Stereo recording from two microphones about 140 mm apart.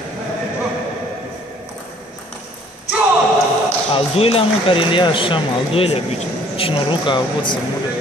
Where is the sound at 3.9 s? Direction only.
45° left (ahead or behind).